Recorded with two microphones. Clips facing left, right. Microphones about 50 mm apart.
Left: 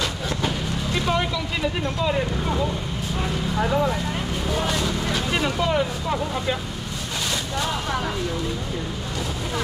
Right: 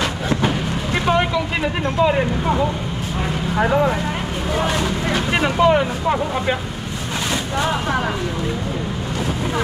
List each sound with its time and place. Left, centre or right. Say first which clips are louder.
0.3 s vehicle: right 6 dB; right
3.5 s speech: right 5 dB; right
4.6 s vehicle: right 5 dB; right